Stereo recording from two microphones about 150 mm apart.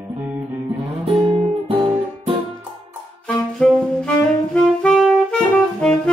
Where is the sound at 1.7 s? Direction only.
40° right (ahead or behind).